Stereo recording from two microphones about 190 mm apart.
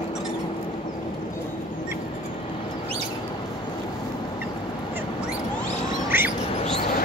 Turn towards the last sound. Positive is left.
turn(degrees=-10)  # may be behind; listen again after turning